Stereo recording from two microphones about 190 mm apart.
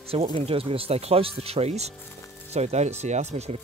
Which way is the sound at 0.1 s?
30° right (ahead or behind).